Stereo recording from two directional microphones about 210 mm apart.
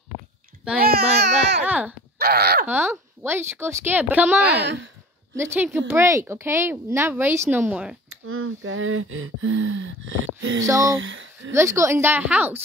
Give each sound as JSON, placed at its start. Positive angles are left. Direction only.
{"t": 0.7, "sound": "a child's voice", "side_deg": -45}
{"t": 1.6, "sound": "speech", "side_deg": -5}
{"t": 2.1, "sound": "speech", "side_deg": -50}
{"t": 2.7, "sound": "speech", "side_deg": -10}
{"t": 4.6, "sound": "speech", "side_deg": -55}
{"t": 5.3, "sound": "speech", "side_deg": -10}
{"t": 8.1, "sound": "speech", "side_deg": -80}
{"t": 10.6, "sound": "speech", "side_deg": -15}
{"t": 11.0, "sound": "speech", "side_deg": -65}
{"t": 11.5, "sound": "speech", "side_deg": -15}